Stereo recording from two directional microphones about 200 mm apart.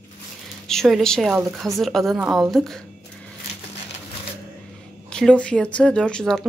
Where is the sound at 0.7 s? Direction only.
Centre (ahead or behind).